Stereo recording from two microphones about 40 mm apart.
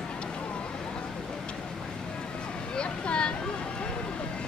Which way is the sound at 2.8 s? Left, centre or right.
Left.